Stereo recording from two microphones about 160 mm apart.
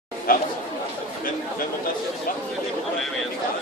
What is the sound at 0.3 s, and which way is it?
Speech, 60° left (ahead or behind).